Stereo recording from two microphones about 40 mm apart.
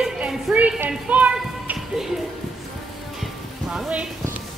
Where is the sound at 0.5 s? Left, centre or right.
Centre.